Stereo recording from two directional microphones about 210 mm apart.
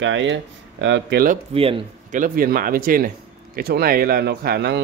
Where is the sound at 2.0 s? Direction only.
40° right (ahead or behind).